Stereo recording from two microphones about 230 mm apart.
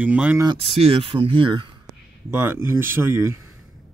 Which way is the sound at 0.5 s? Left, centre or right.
Right.